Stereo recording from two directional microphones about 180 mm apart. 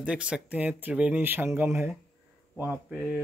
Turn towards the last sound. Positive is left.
turn(degrees=-5)  # may be behind; listen again after turning